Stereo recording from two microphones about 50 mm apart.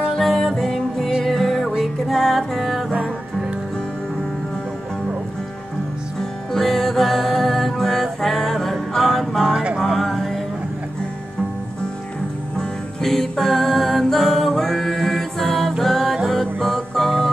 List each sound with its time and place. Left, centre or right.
0.1 s music: centre
2.9 s music: right
6.5 s music: centre
9.5 s music: centre
9.8 s music: centre
12.5 s music: centre